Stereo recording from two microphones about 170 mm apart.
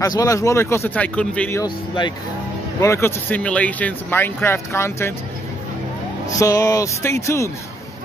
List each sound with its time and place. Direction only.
0.0 s speech: 20° left (ahead or behind)
1.6 s speech: 25° left (ahead or behind)
2.8 s speech: 15° left (ahead or behind)
6.3 s speech: 20° left (ahead or behind)